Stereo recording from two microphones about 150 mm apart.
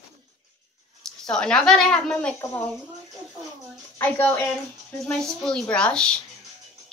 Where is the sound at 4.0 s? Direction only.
10° left (ahead or behind).